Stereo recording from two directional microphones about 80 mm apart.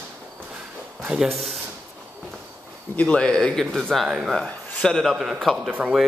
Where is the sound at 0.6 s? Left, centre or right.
Centre.